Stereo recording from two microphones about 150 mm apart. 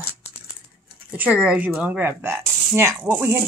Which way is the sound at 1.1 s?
10° right (ahead or behind).